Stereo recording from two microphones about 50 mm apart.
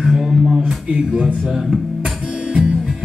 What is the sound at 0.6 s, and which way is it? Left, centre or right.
Music, centre.